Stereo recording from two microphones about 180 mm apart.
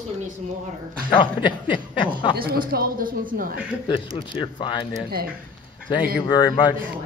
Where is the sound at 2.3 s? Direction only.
60° right (ahead or behind).